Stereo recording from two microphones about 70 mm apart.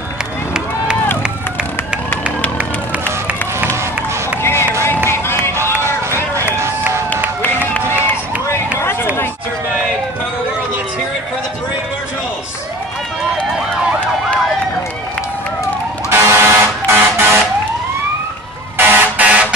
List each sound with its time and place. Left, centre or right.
4.4 s run: left
6.4 s run: right
16.1 s a sound: right
18.8 s vehicle: centre